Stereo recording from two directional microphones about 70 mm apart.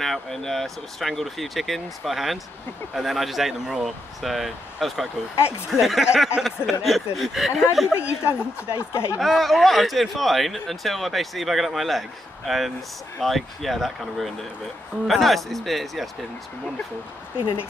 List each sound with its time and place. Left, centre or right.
0.0 s speech: centre
7.9 s speech: right
8.4 s a woman's voice: left
9.2 s speech: centre